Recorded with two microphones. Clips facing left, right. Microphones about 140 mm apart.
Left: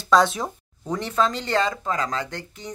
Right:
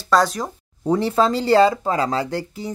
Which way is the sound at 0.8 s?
35° right (ahead or behind).